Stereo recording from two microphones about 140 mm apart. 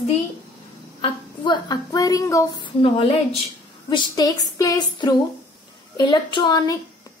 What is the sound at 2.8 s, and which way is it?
Speech, 40° left (ahead or behind).